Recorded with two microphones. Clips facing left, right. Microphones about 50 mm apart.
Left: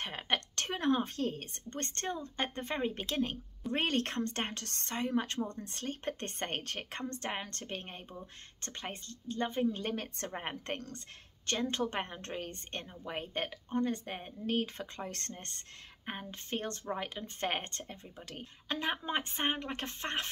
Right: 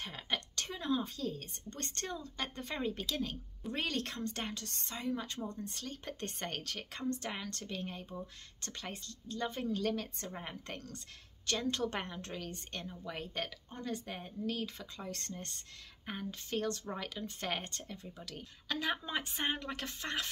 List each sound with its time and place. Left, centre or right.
0.0 s a woman's voice: left
5.8 s a woman's voice: left
9.9 s a woman's voice: left
16.1 s a woman's voice: left